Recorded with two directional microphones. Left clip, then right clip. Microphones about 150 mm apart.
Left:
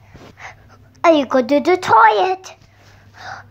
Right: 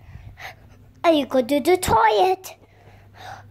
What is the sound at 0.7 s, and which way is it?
A child's voice, 5° right (ahead or behind).